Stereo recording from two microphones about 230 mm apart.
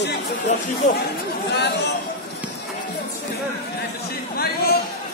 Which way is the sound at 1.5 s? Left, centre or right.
Left.